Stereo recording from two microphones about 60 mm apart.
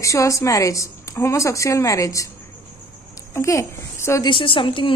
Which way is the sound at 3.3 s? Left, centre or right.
Left.